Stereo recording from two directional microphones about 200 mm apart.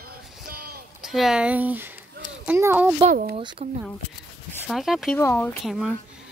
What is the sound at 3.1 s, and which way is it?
Speech, 45° right (ahead or behind).